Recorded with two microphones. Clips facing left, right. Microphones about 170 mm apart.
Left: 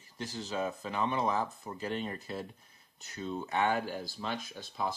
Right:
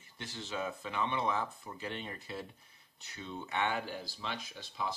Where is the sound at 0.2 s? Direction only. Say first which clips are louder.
Left 4 dB; 40° left (ahead or behind).